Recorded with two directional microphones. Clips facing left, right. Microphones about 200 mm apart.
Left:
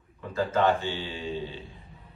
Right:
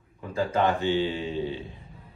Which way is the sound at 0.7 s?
15° right (ahead or behind).